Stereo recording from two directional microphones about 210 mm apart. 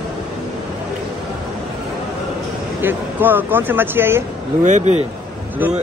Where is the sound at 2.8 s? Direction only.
10° right (ahead or behind).